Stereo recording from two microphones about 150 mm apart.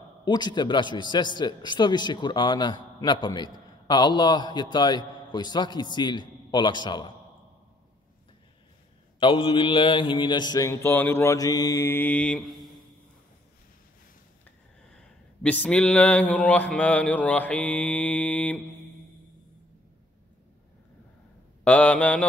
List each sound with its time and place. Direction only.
0.2 s mantra: 30° left (ahead or behind)
9.2 s mantra: 35° left (ahead or behind); by 12.8 s centre (ahead or behind)
15.6 s speech: 5° left (ahead or behind)
21.6 s speech: 10° left (ahead or behind)